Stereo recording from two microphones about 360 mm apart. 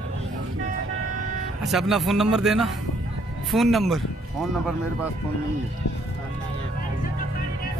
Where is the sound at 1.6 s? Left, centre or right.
Centre.